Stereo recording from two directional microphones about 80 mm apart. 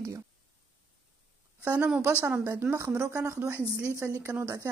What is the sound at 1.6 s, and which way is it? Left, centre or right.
Speech, right.